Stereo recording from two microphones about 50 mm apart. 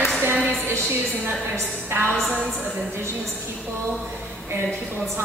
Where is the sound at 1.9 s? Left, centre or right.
Right.